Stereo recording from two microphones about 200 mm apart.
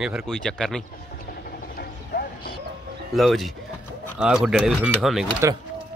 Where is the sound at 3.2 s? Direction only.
Centre (ahead or behind).